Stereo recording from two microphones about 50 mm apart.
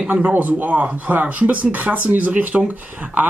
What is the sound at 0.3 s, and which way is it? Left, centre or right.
Speech, right.